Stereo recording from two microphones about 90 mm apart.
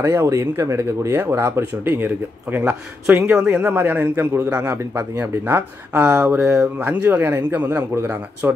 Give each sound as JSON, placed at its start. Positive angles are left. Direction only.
{"t": 0.0, "sound": "speech", "side_deg": -35}
{"t": 6.5, "sound": "speech", "side_deg": -30}